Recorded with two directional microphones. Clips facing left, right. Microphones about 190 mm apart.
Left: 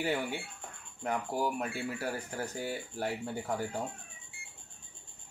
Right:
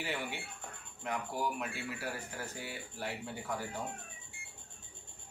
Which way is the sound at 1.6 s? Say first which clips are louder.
Left 5 dB; 40° left (ahead or behind).